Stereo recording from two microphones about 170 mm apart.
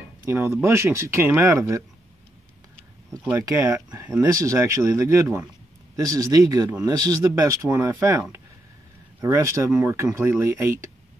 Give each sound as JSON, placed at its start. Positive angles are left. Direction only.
{"t": 0.2, "sound": "speech", "side_deg": -15}
{"t": 3.3, "sound": "speech", "side_deg": -15}